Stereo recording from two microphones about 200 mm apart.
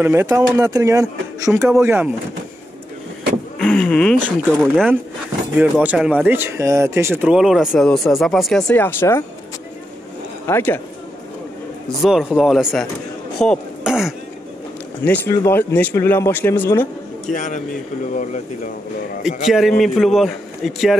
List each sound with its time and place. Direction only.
0.0 s speech: 15° right (ahead or behind)
3.5 s speech: 5° left (ahead or behind)
10.5 s speech: 10° left (ahead or behind)
12.0 s speech: centre (ahead or behind)
15.0 s speech: 10° left (ahead or behind)
17.3 s speech: 40° left (ahead or behind)
19.4 s speech: centre (ahead or behind)